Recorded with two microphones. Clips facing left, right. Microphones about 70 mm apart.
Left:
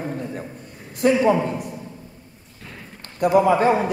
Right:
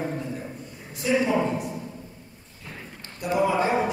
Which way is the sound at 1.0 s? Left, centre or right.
Left.